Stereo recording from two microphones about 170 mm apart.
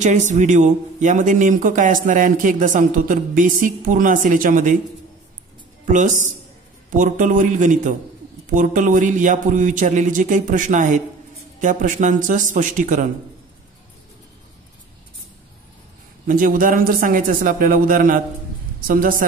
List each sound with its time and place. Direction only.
0.0 s a man's voice: 45° right (ahead or behind)
5.9 s a man's voice: 50° right (ahead or behind)
16.3 s a man's voice: 55° right (ahead or behind)